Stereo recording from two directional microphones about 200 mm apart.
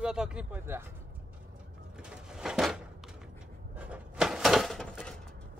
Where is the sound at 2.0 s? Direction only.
5° right (ahead or behind).